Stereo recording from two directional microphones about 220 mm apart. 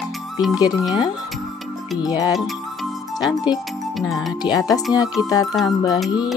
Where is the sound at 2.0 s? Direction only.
15° left (ahead or behind).